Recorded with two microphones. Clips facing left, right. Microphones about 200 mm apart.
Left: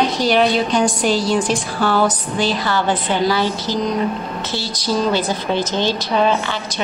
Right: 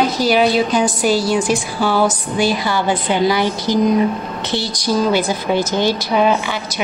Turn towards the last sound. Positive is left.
turn(degrees=-10)  # may be behind; listen again after turning